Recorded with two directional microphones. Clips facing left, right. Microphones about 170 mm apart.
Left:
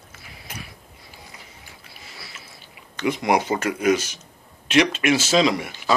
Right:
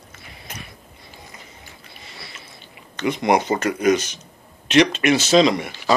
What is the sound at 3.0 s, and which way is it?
Speech, 5° left (ahead or behind).